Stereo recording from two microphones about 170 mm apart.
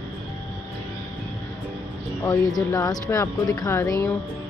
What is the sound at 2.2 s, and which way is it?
Speech, 20° left (ahead or behind).